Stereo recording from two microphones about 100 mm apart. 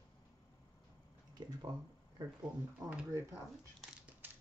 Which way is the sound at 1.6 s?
40° right (ahead or behind).